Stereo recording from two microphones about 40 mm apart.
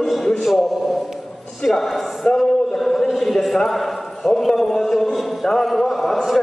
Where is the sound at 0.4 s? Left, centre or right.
Centre.